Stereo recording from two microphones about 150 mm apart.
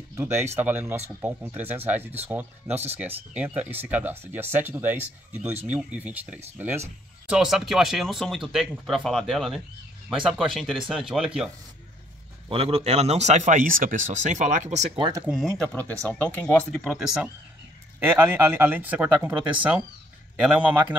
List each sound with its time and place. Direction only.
0.1 s speech: 15° right (ahead or behind)
12.4 s speech: 40° right (ahead or behind)
15.0 s speech: 30° right (ahead or behind)
15.2 s speech: 5° right (ahead or behind)
15.7 s speech: 10° left (ahead or behind)
18.0 s speech: 15° right (ahead or behind)